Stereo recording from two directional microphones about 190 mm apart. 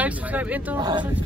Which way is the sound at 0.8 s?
25° right (ahead or behind).